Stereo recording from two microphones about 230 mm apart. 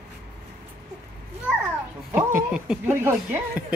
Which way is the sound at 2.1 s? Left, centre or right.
Centre.